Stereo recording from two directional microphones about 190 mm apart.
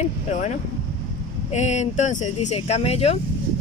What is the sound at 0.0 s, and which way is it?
Speech, 40° left (ahead or behind).